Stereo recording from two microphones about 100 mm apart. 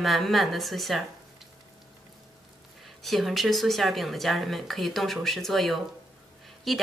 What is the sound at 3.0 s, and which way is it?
A woman's voice, centre (ahead or behind).